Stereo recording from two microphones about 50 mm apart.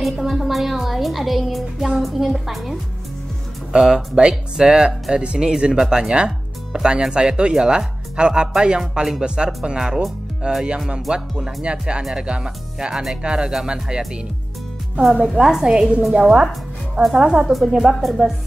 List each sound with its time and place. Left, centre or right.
0.0 s a woman's voice: centre
3.7 s a woman's voice: centre
15.3 s a woman's voice: centre
17.5 s a woman's voice: centre